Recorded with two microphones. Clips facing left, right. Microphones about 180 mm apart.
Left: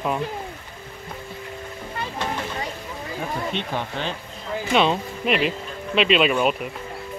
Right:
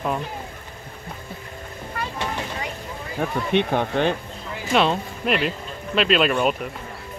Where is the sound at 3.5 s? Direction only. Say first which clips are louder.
Right 7 dB; 55° right (ahead or behind).